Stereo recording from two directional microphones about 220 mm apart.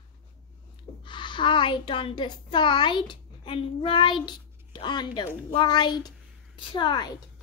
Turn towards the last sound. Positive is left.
turn(degrees=20)  # may be behind; listen again after turning